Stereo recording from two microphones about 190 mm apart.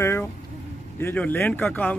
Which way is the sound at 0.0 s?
15° left (ahead or behind).